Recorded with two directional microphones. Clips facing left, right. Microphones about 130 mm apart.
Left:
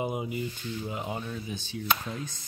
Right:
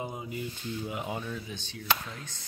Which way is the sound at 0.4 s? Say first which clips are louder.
Left 1 dB; 5° right (ahead or behind).